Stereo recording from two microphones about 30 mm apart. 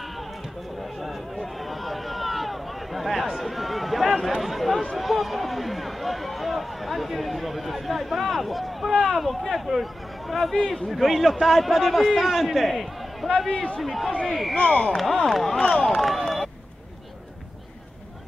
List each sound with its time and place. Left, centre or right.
1.3 s a sound: centre
4.4 s speech: centre
14.6 s speech: left
14.9 s speech: centre